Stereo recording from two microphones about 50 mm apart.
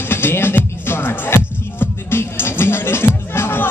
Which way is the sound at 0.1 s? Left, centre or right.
Left.